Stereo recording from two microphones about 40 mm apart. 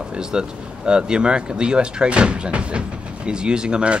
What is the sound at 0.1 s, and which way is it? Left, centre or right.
Speech, right.